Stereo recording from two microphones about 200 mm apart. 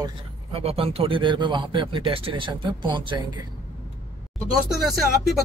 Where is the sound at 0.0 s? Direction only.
30° right (ahead or behind).